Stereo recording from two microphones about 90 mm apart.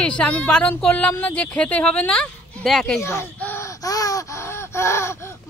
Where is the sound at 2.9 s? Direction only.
30° left (ahead or behind).